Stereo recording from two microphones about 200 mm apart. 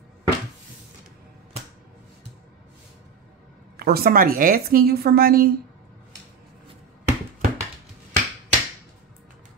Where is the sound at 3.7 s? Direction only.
50° right (ahead or behind).